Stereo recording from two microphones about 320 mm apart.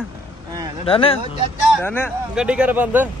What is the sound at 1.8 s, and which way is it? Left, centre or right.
A man's voice, centre.